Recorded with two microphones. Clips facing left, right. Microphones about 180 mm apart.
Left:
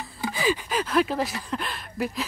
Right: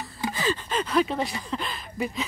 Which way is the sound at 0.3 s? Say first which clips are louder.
Left 3 dB; 10° left (ahead or behind).